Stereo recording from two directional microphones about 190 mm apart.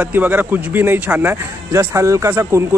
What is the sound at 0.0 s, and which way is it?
Speech, 10° right (ahead or behind).